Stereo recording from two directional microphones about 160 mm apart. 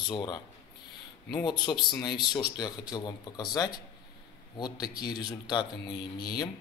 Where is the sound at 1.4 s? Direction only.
25° left (ahead or behind).